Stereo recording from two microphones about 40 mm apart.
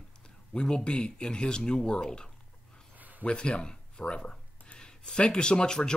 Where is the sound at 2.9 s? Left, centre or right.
Right.